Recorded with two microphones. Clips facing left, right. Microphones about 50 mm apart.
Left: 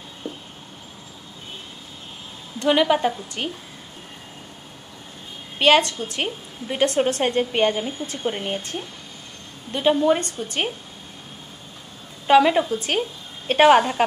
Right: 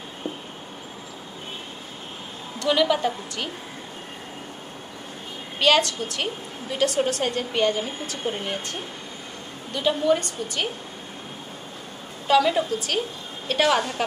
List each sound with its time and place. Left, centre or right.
2.6 s a woman's voice: left
5.6 s a woman's voice: left
9.7 s a woman's voice: left
12.3 s a woman's voice: left